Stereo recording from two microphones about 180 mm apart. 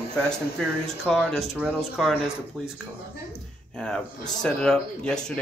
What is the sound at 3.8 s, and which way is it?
Speech, 5° left (ahead or behind).